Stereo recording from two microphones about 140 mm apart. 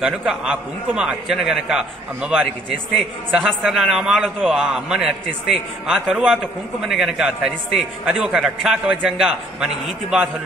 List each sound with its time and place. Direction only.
0.0 s a man's voice: 5° right (ahead or behind)